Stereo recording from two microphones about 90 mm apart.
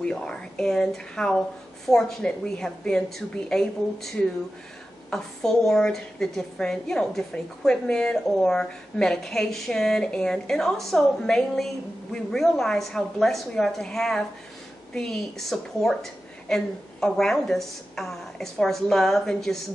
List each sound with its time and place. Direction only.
0.0 s a woman's voice: 10° left (ahead or behind)